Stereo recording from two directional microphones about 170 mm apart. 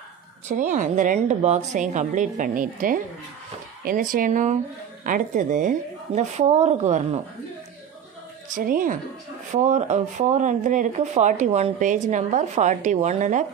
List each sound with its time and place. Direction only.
0.5 s speech: 45° right (ahead or behind)
8.5 s speech: 55° right (ahead or behind)